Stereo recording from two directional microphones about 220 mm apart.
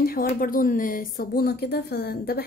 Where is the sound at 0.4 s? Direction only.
40° left (ahead or behind).